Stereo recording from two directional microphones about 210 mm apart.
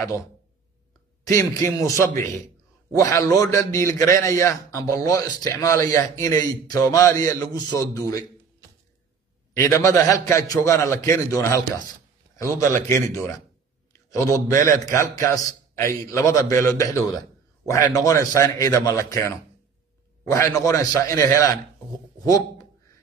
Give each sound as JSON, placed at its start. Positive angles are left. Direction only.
{"t": 1.2, "sound": "speech", "side_deg": 15}
{"t": 9.6, "sound": "a man's voice", "side_deg": 15}